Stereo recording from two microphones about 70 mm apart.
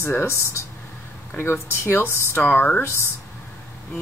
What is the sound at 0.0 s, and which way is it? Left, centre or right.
A woman's voice, left.